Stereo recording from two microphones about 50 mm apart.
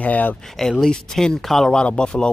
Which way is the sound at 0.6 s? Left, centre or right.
Centre.